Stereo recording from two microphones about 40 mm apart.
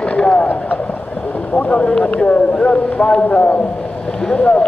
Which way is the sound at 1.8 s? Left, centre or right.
Left.